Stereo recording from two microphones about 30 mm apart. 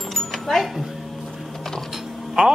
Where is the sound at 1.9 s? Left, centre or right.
Centre.